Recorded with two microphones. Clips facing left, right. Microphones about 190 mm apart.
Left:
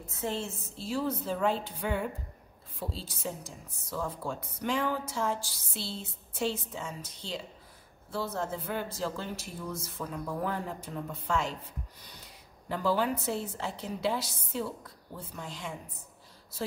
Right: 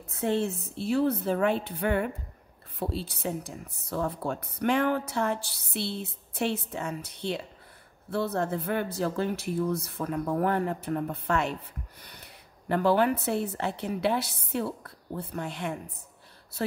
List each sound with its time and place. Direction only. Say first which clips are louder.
0.0 s a woman's voice: right 7 dB; 60° right (ahead or behind)